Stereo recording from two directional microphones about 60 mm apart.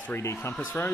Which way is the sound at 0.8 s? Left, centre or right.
Left.